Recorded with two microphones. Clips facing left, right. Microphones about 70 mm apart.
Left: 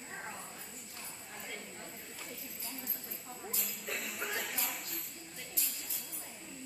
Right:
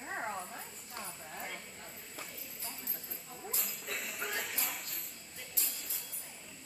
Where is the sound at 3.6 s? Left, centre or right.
Centre.